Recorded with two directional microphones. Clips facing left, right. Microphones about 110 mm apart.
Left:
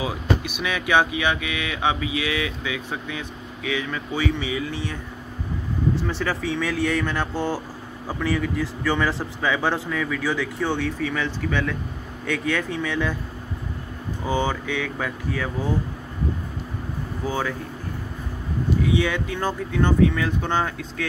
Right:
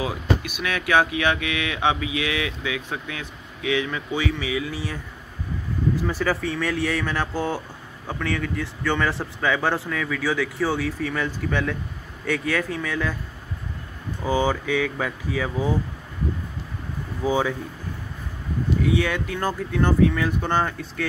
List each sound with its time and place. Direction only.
0.0 s speech: 15° left (ahead or behind)
2.0 s speech: 5° right (ahead or behind)
6.0 s speech: 5° right (ahead or behind)
14.2 s speech: 10° right (ahead or behind)
17.2 s speech: 15° right (ahead or behind)
19.2 s speech: centre (ahead or behind)